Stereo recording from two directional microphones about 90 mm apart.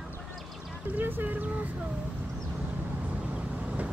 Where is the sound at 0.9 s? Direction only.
20° right (ahead or behind).